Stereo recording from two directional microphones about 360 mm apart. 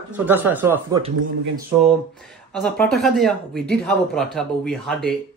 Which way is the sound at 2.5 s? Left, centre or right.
Centre.